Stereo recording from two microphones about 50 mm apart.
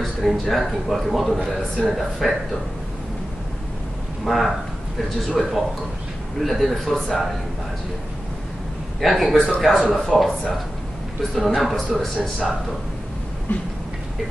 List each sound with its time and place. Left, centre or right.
0.0 s speech: centre
4.2 s speech: centre
9.0 s speech: centre
11.3 s speech: centre
13.5 s a sound: left